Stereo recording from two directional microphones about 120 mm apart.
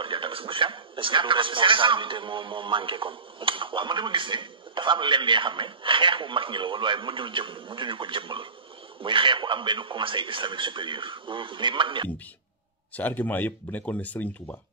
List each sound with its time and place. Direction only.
0.0 s a man's voice: 45° right (ahead or behind)
12.9 s speech: 15° left (ahead or behind)